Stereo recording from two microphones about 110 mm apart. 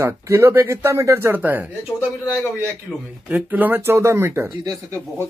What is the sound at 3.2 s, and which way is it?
Speech, 15° right (ahead or behind).